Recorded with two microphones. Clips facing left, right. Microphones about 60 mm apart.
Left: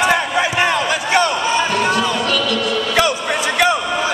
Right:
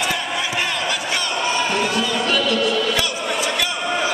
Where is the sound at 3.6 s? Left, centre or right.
Left.